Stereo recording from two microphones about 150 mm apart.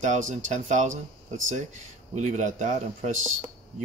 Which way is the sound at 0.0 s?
55° right (ahead or behind).